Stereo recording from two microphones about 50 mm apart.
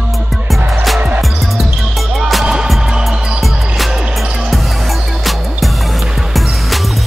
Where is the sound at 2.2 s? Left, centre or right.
Centre.